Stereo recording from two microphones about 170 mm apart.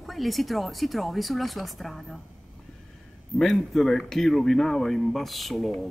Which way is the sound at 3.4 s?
Centre (ahead or behind).